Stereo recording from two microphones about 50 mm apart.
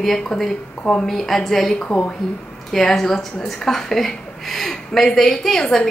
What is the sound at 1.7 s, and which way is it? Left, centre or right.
Speech, left.